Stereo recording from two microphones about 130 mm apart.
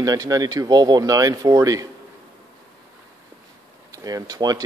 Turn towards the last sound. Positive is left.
turn(degrees=-30)  # may be behind; listen again after turning